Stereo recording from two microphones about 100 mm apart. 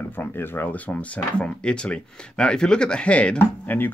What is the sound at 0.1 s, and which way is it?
Speech, 20° left (ahead or behind).